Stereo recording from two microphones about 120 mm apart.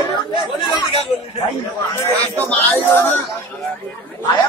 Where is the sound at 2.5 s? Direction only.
20° left (ahead or behind).